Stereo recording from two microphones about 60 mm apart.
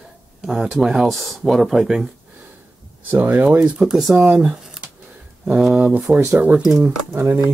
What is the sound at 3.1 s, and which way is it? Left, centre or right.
Speech, right.